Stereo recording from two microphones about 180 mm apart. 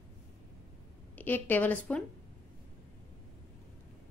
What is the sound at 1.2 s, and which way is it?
Speech, 10° left (ahead or behind).